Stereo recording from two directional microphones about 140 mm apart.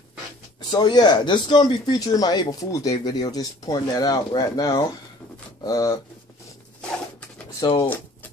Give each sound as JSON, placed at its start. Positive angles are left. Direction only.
{"t": 0.6, "sound": "speech", "side_deg": 30}
{"t": 7.6, "sound": "speech", "side_deg": 35}